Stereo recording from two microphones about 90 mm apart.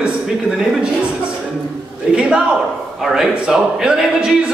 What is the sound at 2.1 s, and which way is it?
A man's voice, 10° right (ahead or behind).